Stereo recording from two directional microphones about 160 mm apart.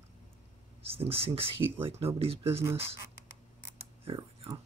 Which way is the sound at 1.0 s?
35° right (ahead or behind).